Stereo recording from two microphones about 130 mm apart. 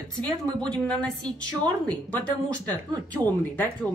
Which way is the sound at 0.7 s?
5° left (ahead or behind).